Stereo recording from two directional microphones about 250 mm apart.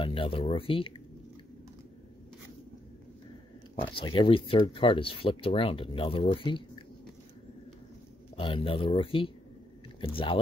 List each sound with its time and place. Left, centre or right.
0.0 s speech: left
3.8 s speech: centre
8.4 s speech: left